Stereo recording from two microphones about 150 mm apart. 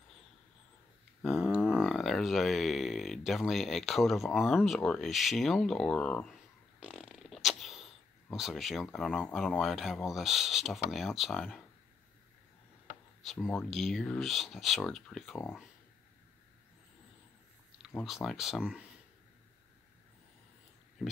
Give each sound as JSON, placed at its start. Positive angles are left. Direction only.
{"t": 1.2, "sound": "speech", "side_deg": -5}
{"t": 6.8, "sound": "speech", "side_deg": -5}
{"t": 13.2, "sound": "speech", "side_deg": 0}
{"t": 18.0, "sound": "speech", "side_deg": 0}